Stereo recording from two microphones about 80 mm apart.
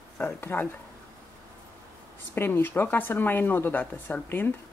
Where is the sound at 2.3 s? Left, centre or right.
Left.